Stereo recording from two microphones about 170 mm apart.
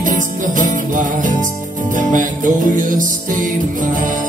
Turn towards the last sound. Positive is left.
turn(degrees=-50)  # may be behind; listen again after turning